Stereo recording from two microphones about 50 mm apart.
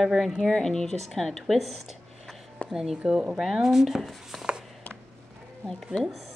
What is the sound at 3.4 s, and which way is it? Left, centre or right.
A woman's voice, centre.